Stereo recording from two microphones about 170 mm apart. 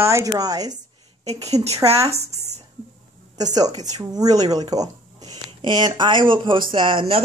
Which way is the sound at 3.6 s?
20° right (ahead or behind).